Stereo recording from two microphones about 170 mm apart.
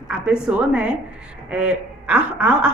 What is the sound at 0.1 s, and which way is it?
A woman's voice, 5° right (ahead or behind).